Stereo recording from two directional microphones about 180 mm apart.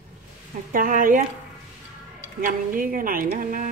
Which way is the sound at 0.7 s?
50° right (ahead or behind).